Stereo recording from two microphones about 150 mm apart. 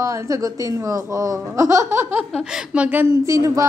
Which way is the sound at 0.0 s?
20° right (ahead or behind).